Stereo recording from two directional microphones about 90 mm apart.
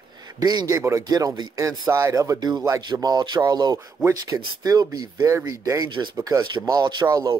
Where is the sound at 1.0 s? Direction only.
45° right (ahead or behind).